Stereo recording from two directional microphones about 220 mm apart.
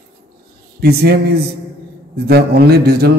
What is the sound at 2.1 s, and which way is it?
Speech, 45° right (ahead or behind).